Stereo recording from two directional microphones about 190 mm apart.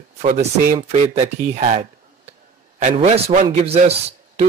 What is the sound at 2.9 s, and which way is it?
Speech, 30° right (ahead or behind).